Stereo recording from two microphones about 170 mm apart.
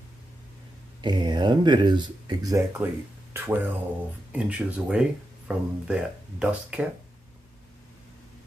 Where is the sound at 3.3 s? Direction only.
10° right (ahead or behind).